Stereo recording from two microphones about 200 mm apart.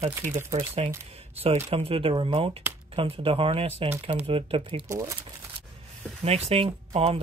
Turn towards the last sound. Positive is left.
turn(degrees=-30)  # may be behind; listen again after turning